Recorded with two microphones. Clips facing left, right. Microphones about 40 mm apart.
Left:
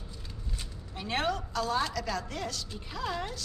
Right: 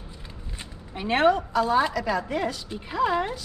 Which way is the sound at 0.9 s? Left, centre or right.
Right.